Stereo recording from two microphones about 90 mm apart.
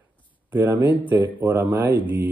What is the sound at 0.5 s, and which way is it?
Speech, 20° right (ahead or behind).